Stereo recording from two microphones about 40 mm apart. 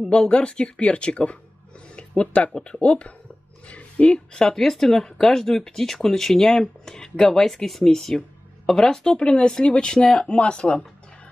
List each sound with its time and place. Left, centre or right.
0.1 s speech: left
3.6 s a sound: left
4.1 s speech: left
4.6 s speech: centre
10.2 s speech: left